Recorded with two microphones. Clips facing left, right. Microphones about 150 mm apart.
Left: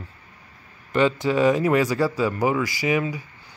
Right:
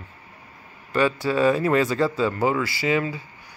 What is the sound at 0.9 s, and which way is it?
Speech, 20° left (ahead or behind).